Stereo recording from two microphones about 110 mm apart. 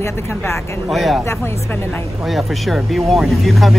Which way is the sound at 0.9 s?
Centre (ahead or behind).